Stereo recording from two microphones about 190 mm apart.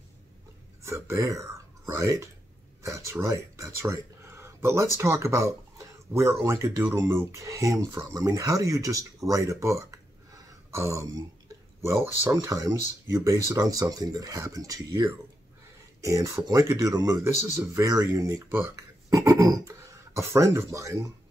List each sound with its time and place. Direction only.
0.8 s speech: 15° right (ahead or behind)